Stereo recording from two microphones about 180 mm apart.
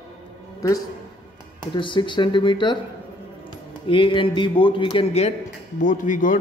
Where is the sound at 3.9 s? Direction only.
30° left (ahead or behind).